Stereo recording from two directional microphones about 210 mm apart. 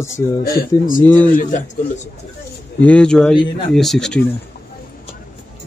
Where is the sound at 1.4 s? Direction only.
40° left (ahead or behind).